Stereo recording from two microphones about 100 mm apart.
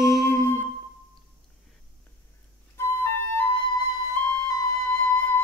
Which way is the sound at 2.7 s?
25° left (ahead or behind).